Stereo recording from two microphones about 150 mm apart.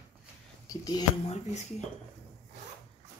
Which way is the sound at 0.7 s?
25° left (ahead or behind).